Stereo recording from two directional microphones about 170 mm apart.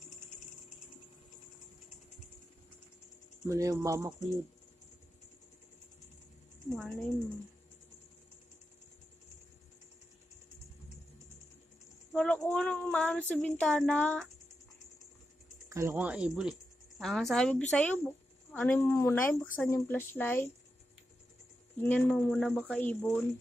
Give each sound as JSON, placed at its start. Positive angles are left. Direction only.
{"t": 3.4, "sound": "speech", "side_deg": -20}
{"t": 6.7, "sound": "speech", "side_deg": 0}
{"t": 12.1, "sound": "a woman's voice", "side_deg": 5}
{"t": 15.9, "sound": "speech", "side_deg": -5}
{"t": 21.8, "sound": "speech", "side_deg": 10}